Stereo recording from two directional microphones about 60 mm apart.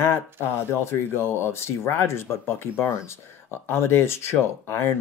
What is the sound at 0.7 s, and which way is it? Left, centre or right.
Speech, left.